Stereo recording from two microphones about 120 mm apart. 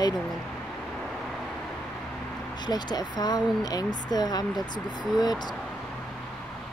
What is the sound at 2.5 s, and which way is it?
Speech, 35° left (ahead or behind).